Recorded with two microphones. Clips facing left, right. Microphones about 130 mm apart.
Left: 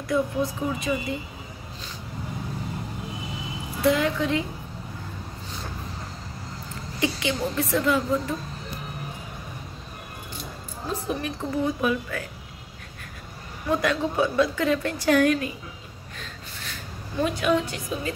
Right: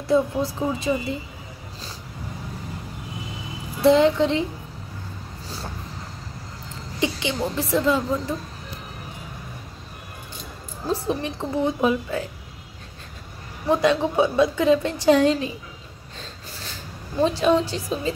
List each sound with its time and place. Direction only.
0.1 s a woman's voice: 30° right (ahead or behind)
3.8 s a woman's voice: 30° right (ahead or behind)
7.0 s a woman's voice: 25° right (ahead or behind)
10.9 s a woman's voice: 30° right (ahead or behind)
13.7 s a woman's voice: 20° right (ahead or behind)
17.2 s a woman's voice: 30° right (ahead or behind)